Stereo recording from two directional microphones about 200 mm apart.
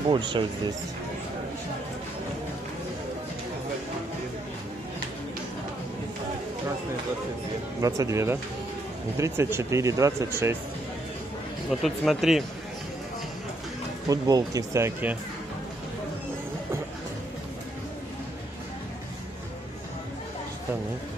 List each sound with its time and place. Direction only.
0.1 s speech: 25° right (ahead or behind)
7.8 s speech: 15° right (ahead or behind)
11.7 s speech: centre (ahead or behind)
14.0 s speech: 15° right (ahead or behind)